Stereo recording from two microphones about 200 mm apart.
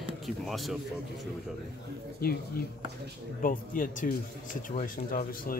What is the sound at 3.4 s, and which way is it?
Speech, 45° left (ahead or behind).